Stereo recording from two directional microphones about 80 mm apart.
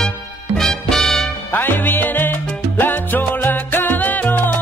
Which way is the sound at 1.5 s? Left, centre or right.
Left.